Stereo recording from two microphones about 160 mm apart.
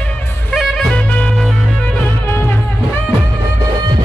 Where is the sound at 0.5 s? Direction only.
Centre (ahead or behind).